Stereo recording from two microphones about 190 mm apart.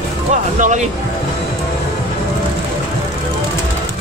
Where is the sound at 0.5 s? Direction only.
40° right (ahead or behind).